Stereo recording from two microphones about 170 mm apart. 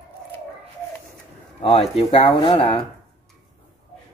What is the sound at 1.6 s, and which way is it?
Speech, 30° left (ahead or behind).